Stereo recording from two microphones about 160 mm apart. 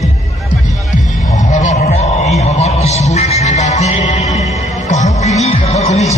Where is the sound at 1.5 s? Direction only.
45° left (ahead or behind).